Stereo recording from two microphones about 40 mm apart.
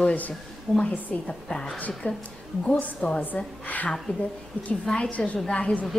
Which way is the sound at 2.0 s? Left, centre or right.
Left.